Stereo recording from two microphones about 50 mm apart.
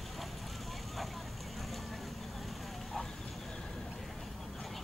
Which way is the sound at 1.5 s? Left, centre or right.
Centre.